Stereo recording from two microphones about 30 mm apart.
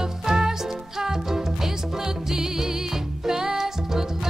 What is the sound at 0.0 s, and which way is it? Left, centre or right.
Music, centre.